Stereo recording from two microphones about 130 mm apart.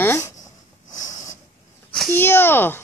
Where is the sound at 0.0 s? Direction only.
20° left (ahead or behind).